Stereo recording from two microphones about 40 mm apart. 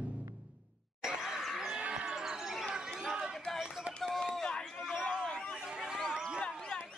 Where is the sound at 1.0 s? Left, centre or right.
Centre.